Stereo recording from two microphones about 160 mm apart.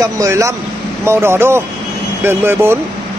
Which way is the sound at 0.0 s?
20° right (ahead or behind).